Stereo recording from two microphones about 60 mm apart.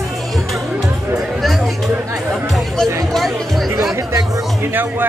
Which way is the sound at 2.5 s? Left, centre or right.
Centre.